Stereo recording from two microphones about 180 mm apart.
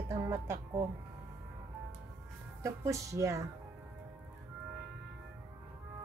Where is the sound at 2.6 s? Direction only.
15° right (ahead or behind).